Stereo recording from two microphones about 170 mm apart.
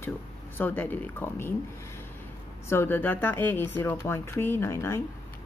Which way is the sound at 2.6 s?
15° left (ahead or behind).